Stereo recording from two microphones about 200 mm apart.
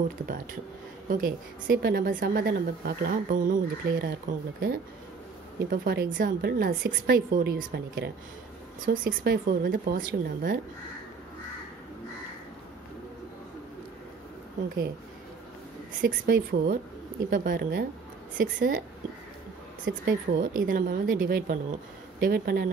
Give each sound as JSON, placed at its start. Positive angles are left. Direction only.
{"t": 1.1, "sound": "a woman's voice", "side_deg": -45}
{"t": 16.0, "sound": "a woman's voice", "side_deg": -50}
{"t": 20.1, "sound": "a woman's voice", "side_deg": -45}